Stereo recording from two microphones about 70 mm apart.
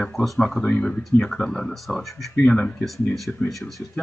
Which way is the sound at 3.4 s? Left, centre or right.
Centre.